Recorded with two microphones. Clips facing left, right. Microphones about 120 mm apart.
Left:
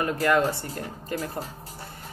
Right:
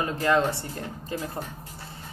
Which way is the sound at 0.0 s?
25° right (ahead or behind).